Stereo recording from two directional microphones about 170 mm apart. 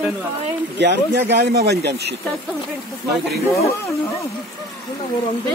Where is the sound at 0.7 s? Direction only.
90° right.